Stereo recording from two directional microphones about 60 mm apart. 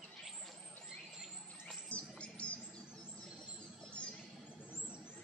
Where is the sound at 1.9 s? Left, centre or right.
Centre.